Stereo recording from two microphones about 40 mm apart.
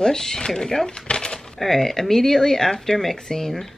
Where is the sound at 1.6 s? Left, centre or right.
Centre.